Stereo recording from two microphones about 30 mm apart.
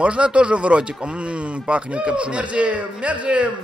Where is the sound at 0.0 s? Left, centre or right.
Right.